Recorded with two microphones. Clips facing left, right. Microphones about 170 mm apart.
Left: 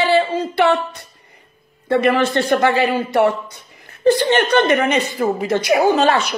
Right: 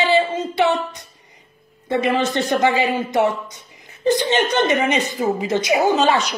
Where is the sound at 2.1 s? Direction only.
15° right (ahead or behind).